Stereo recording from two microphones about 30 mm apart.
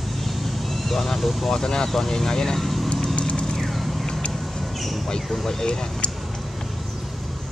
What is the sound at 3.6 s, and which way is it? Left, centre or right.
Vehicle, centre.